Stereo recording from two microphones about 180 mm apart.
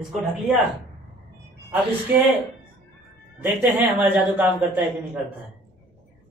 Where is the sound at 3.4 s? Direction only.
15° right (ahead or behind).